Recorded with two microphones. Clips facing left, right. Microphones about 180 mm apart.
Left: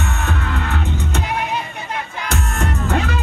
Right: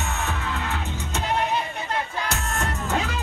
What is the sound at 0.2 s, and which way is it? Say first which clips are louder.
Music: left 4 dB; 65° left (ahead or behind).